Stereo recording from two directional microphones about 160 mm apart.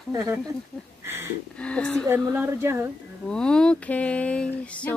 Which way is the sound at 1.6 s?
5° left (ahead or behind).